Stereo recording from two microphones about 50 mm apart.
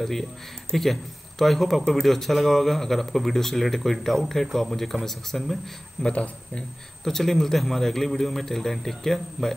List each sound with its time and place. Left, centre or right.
0.0 s speech: centre
6.0 s speech: left
7.1 s speech: centre